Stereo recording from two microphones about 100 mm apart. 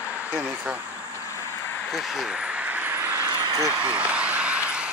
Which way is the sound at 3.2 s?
40° right (ahead or behind).